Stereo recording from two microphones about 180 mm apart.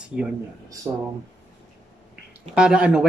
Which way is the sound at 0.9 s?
20° right (ahead or behind).